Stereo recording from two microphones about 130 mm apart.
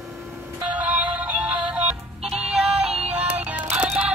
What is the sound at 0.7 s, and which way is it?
Synthetic singing, 10° right (ahead or behind).